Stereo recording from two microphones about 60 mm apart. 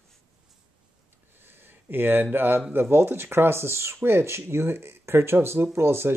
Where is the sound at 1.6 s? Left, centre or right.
Right.